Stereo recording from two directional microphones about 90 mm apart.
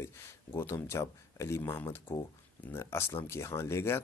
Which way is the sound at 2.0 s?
50° left (ahead or behind).